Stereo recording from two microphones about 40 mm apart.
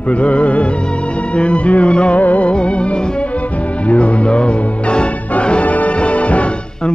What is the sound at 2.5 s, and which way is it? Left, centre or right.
Music, left.